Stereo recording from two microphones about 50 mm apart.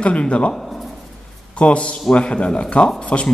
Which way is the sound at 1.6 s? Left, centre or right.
Left.